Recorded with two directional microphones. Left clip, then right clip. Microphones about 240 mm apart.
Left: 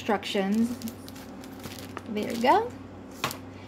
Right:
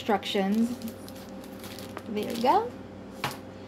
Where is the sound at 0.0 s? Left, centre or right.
Centre.